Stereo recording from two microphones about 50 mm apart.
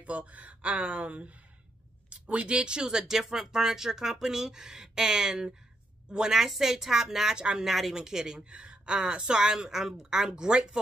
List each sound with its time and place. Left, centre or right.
0.0 s speech: right; by 7.3 s centre
7.3 s speech: centre
7.6 s speech: centre